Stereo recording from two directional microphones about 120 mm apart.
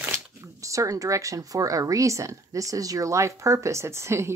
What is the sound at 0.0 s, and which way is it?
Speech, 25° right (ahead or behind).